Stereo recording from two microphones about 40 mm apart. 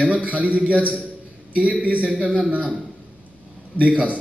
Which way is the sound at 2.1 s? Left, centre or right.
Right.